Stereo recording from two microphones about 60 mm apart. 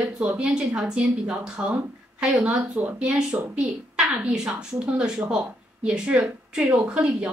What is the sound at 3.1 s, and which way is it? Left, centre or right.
A woman's voice, centre.